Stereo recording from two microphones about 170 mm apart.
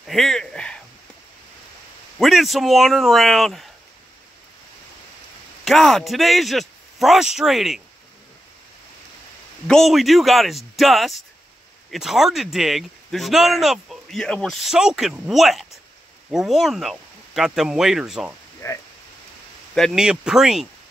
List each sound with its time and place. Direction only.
0.0 s speech: centre (ahead or behind)
2.1 s a man's voice: centre (ahead or behind)
5.7 s a man's voice: centre (ahead or behind)
9.7 s a man's voice: centre (ahead or behind)
18.6 s speech: 15° left (ahead or behind)
19.7 s a man's voice: centre (ahead or behind)